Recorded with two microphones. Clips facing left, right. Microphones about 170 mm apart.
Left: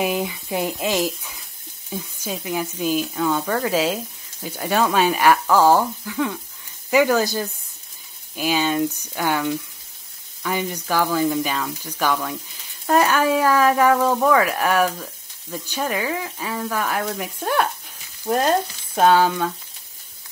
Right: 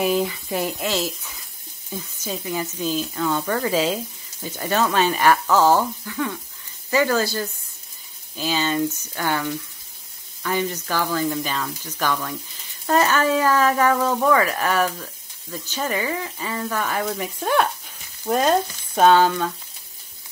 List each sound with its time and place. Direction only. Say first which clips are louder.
0.0 s speech: right 2 dB; 15° left (ahead or behind)
1.9 s sizzle: left 1 dB; 10° left (ahead or behind)
2.8 s speech: left 3 dB; 10° left (ahead or behind)